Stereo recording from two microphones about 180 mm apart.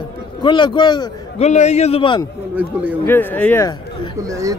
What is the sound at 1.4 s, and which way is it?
Speech, 40° left (ahead or behind).